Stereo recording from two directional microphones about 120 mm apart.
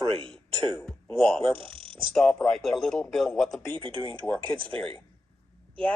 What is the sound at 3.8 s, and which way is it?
Speech, 45° right (ahead or behind).